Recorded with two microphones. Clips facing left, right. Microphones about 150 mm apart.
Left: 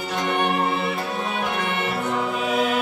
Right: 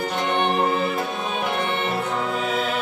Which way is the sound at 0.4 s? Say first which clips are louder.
Right 3 dB; 30° right (ahead or behind).